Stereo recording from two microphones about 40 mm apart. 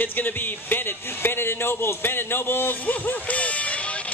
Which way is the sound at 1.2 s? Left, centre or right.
Left.